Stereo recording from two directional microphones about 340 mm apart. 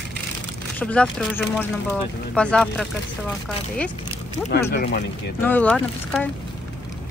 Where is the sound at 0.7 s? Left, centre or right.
Centre.